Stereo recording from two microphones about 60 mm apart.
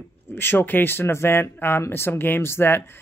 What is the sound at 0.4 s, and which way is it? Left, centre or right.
Speech, left.